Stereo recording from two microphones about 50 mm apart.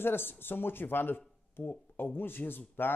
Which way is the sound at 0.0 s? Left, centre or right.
Left.